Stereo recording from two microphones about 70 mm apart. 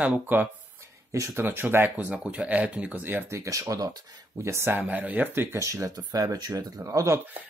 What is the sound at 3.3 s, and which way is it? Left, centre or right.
Speech, right.